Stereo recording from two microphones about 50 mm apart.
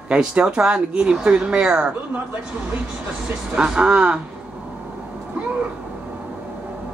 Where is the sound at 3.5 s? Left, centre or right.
Centre.